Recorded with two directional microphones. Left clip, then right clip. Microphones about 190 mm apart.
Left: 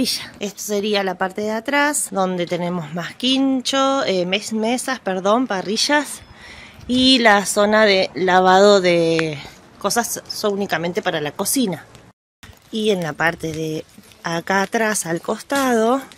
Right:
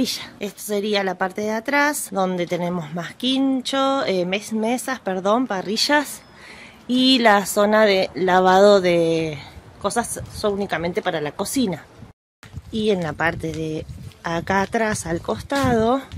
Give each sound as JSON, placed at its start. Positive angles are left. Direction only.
{"t": 0.0, "sound": "a woman's voice", "side_deg": 0}